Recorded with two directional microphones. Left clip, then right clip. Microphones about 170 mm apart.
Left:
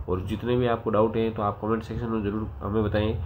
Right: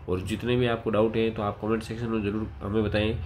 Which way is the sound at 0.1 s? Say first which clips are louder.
Left 1 dB; 20° right (ahead or behind).